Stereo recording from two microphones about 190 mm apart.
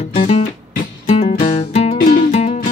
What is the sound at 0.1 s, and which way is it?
Music, 40° left (ahead or behind).